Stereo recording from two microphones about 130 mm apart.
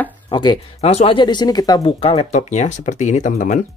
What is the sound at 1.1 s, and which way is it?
Speech, 35° left (ahead or behind).